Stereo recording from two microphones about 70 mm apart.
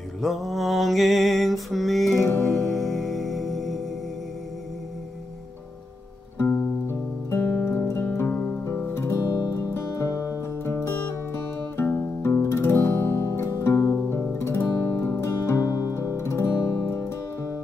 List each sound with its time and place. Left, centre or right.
0.2 s mantra: centre
2.4 s music: centre
6.3 s music: left
8.3 s music: centre
8.9 s music: left